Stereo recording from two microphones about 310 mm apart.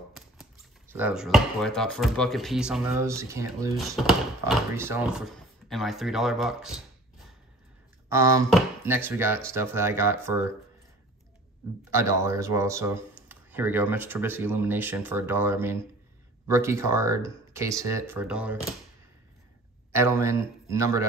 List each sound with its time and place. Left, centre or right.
0.1 s speech: centre
8.1 s speech: centre
11.9 s speech: centre
19.9 s speech: centre